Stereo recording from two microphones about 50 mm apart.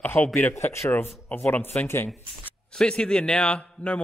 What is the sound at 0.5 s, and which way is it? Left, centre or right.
Speech, left.